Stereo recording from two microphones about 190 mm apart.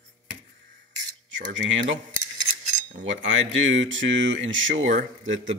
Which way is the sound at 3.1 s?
90° right.